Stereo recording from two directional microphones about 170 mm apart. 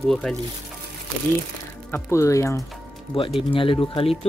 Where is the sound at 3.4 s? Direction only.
30° left (ahead or behind).